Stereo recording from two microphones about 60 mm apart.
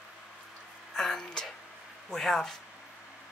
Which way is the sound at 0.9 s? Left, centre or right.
Centre.